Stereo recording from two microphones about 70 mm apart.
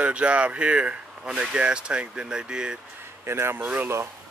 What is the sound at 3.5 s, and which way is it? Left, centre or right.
Speech, right.